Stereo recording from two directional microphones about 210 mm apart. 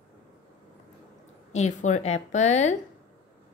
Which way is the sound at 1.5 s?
35° left (ahead or behind).